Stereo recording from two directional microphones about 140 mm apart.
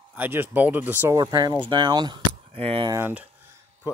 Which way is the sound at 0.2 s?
15° right (ahead or behind).